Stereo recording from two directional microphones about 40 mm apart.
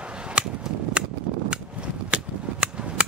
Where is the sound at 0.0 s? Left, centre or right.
Right.